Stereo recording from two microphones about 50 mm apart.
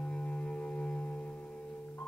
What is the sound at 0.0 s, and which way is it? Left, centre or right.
Music, centre.